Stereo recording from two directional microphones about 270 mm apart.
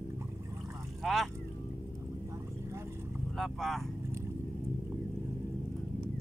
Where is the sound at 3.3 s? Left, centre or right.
Centre.